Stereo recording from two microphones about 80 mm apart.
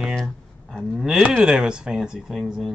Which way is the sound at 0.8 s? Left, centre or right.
Centre.